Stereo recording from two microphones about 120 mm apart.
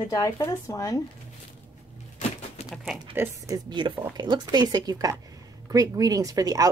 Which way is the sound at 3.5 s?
40° right (ahead or behind).